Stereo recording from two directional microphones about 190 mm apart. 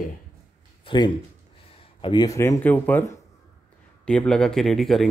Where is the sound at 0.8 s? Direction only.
25° left (ahead or behind).